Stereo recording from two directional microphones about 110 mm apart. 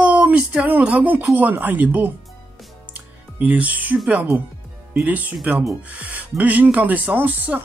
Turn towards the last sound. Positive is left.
turn(degrees=-15)  # may be behind; listen again after turning